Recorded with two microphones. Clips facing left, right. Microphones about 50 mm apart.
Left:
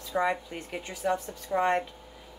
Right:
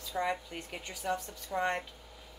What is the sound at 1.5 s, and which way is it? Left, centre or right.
Speech, left.